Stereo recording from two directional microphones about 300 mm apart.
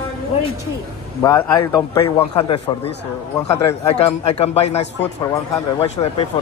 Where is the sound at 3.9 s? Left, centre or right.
Centre.